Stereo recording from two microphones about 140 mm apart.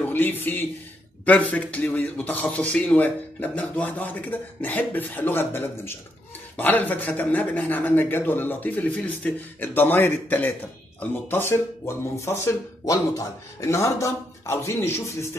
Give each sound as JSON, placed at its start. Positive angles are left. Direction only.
{"t": 0.0, "sound": "speech", "side_deg": 15}